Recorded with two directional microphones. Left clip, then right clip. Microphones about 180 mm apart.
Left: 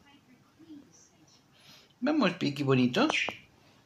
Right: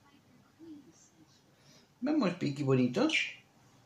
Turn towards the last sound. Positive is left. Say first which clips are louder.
# left 3 dB
turn(degrees=25)  # may be behind; listen again after turning